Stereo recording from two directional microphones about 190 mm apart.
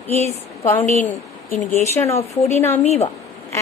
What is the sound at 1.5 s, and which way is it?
Speech, 35° left (ahead or behind).